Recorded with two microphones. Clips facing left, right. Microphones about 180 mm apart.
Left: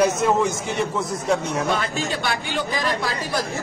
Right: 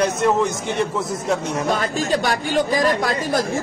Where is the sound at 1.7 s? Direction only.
40° right (ahead or behind).